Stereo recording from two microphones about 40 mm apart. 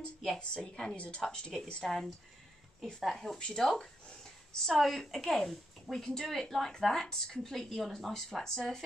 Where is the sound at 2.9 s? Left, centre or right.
Centre.